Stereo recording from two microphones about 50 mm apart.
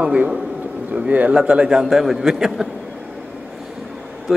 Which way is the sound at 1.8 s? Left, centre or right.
Centre.